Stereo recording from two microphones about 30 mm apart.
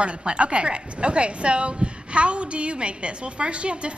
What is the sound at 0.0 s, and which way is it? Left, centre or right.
A woman's voice, right.